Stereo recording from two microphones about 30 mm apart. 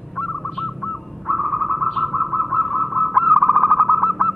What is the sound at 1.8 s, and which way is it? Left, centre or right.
Bird, centre.